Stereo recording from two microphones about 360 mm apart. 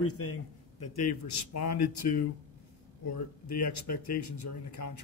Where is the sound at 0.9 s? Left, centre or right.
Left.